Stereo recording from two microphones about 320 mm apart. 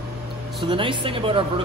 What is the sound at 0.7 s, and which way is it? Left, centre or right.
Speech, centre.